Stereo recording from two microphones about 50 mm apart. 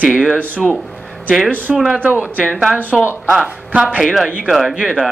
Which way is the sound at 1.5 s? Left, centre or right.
Right.